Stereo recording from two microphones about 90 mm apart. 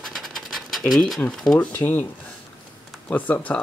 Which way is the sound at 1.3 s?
5° left (ahead or behind).